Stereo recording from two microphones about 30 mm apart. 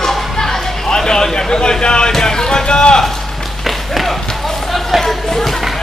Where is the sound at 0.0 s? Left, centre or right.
Centre.